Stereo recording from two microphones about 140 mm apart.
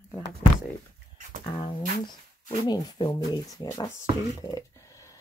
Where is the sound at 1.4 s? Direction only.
35° left (ahead or behind).